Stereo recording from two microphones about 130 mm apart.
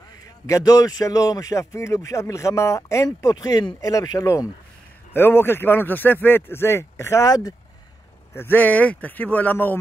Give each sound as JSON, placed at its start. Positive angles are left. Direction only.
{"t": 0.5, "sound": "speech", "side_deg": 25}
{"t": 5.1, "sound": "speech", "side_deg": 15}
{"t": 8.4, "sound": "speech", "side_deg": 15}